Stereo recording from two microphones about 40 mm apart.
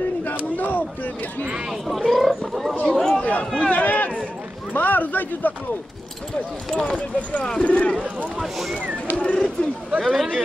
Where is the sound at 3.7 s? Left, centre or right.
Left.